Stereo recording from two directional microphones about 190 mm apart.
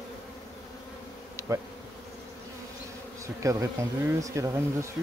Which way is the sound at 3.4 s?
15° right (ahead or behind).